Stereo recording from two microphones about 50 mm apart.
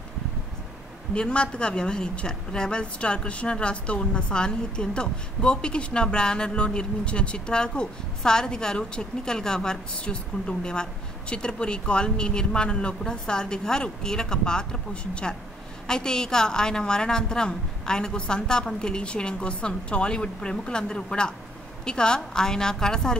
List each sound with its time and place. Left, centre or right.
1.1 s a woman's voice: centre